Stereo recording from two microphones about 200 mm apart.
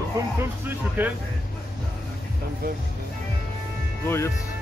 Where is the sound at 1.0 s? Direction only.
10° right (ahead or behind).